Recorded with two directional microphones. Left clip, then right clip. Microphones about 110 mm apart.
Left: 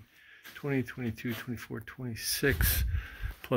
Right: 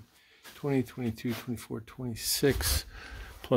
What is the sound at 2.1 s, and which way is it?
Speech, 45° right (ahead or behind).